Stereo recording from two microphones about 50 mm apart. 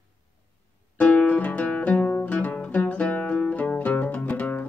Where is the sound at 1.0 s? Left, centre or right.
Left.